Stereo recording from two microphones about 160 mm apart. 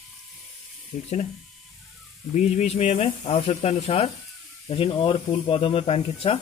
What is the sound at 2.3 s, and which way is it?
Speech, 45° left (ahead or behind).